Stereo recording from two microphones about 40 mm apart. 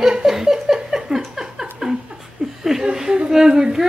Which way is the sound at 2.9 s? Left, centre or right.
Centre.